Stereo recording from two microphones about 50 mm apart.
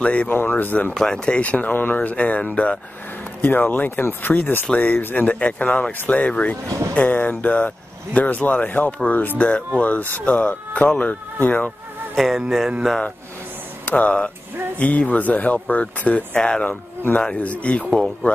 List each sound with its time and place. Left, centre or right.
0.0 s speech: left
0.3 s speech: left
0.9 s speech: centre
3.3 s speech: left
12.4 s music: centre
13.8 s speech: left